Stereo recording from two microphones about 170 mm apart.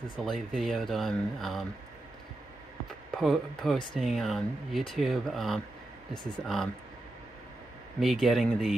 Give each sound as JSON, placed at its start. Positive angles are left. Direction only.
{"t": 0.2, "sound": "speech", "side_deg": 0}
{"t": 3.2, "sound": "speech", "side_deg": 0}
{"t": 8.0, "sound": "speech", "side_deg": 0}